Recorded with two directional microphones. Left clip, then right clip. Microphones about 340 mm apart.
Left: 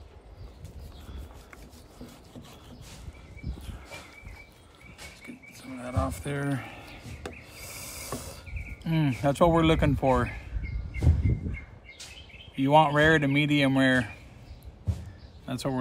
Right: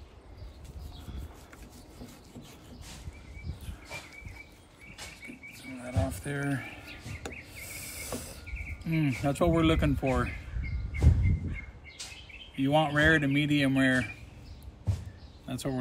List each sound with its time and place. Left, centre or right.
5.9 s speech: centre
7.6 s cricket: centre
8.8 s speech: centre
12.5 s speech: centre
15.4 s speech: centre